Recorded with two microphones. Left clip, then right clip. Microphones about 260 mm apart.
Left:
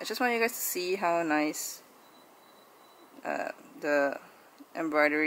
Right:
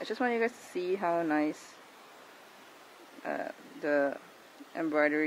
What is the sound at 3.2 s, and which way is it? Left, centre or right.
Speech, centre.